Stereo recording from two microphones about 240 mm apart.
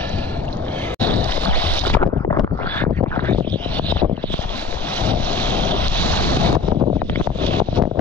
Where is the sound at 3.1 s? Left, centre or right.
Centre.